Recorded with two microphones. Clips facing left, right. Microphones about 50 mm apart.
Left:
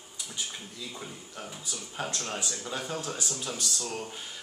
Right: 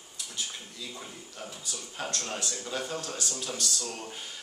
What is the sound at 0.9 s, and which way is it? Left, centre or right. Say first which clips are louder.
Speech: left 2 dB; centre.